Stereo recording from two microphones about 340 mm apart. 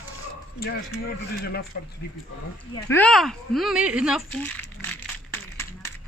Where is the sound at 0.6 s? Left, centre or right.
Left.